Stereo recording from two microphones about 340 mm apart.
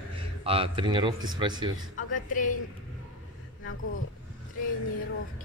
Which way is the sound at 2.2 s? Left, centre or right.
Left.